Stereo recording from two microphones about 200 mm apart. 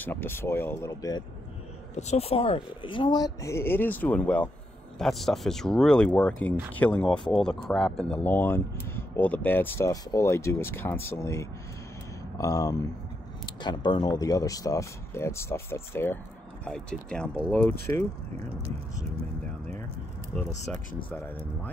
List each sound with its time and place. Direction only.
0.0 s speech: 10° left (ahead or behind)
2.0 s speech: 35° left (ahead or behind); by 17.7 s 5° left (ahead or behind)
20.7 s speech: 10° left (ahead or behind)